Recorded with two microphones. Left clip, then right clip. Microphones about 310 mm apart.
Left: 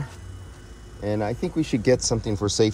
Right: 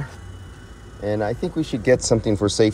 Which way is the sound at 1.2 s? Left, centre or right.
Left.